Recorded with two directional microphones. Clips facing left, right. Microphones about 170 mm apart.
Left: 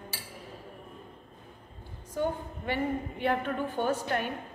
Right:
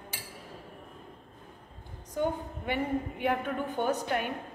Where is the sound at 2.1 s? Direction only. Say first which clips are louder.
Even; 15° right (ahead or behind).